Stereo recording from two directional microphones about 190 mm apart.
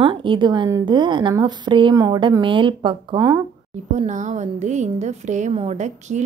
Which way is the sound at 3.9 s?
40° right (ahead or behind).